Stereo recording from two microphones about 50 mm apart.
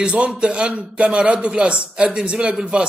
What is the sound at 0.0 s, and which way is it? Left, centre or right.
A man's voice, right.